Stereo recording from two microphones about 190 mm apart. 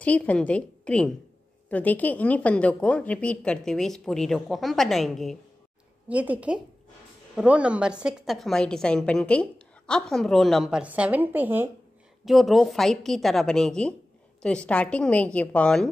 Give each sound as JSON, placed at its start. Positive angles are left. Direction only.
{"t": 0.0, "sound": "a woman's voice", "side_deg": 5}